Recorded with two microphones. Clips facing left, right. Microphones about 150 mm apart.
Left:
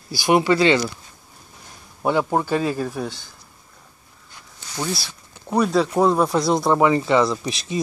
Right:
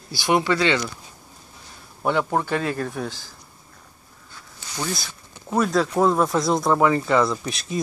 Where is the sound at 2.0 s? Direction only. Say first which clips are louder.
Left 2 dB; 15° left (ahead or behind).